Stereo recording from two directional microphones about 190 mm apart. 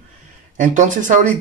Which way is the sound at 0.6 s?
40° right (ahead or behind).